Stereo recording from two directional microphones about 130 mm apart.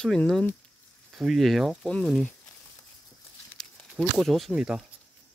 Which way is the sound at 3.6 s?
5° left (ahead or behind).